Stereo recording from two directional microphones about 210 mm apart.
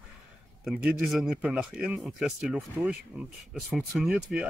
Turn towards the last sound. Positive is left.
turn(degrees=0)  # may be behind; listen again after turning